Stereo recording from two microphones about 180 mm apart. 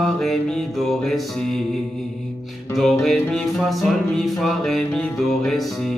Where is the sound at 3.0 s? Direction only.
Centre (ahead or behind).